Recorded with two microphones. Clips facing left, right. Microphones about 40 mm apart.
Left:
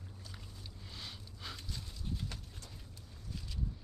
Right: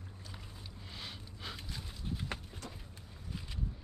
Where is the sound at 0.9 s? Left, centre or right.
Centre.